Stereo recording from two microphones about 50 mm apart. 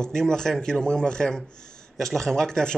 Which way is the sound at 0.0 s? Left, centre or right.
Centre.